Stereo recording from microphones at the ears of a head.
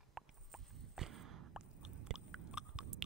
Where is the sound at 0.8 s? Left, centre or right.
Right.